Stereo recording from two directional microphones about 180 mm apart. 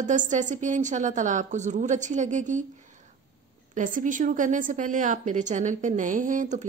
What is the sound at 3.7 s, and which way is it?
A woman's voice, 45° right (ahead or behind).